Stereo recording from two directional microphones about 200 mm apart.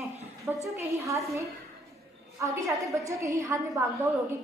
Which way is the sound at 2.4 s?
15° right (ahead or behind).